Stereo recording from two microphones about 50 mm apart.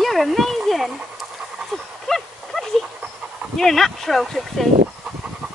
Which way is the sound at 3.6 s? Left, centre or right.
Centre.